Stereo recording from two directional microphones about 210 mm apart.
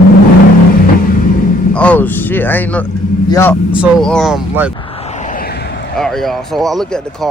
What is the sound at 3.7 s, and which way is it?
Speech, centre (ahead or behind).